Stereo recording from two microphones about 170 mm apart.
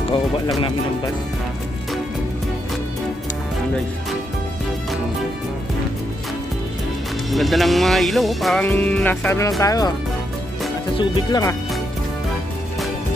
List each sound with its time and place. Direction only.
7.2 s music: centre (ahead or behind)
9.6 s speech: 20° left (ahead or behind)
11.0 s speech: 30° left (ahead or behind)